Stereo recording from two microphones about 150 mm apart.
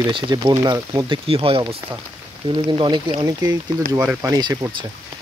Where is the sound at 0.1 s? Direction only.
30° right (ahead or behind).